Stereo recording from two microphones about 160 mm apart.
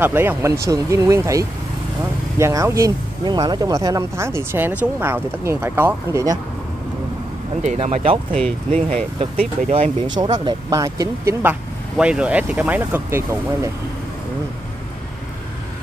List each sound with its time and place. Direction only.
0.0 s speech: 10° right (ahead or behind)
7.6 s speech: 45° right (ahead or behind)
8.7 s speech: 50° right (ahead or behind)
10.4 s speech: 20° right (ahead or behind)
12.0 s speech: 5° right (ahead or behind)